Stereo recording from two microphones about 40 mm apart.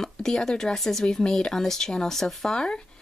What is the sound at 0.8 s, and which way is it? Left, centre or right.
Speech, centre.